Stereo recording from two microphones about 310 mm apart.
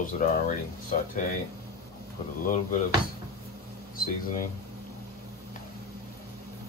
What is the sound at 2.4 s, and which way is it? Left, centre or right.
Speech, left.